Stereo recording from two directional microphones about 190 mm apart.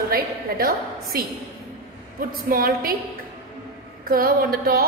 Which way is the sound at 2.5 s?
50° right (ahead or behind).